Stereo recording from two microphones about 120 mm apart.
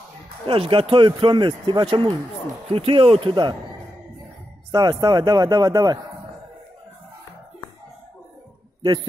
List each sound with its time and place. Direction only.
0.5 s speech: 50° right (ahead or behind)
2.7 s speech: 50° right (ahead or behind)
4.6 s a man's voice: 35° right (ahead or behind)